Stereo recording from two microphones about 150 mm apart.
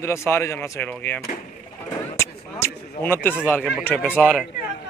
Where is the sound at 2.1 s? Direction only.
15° left (ahead or behind).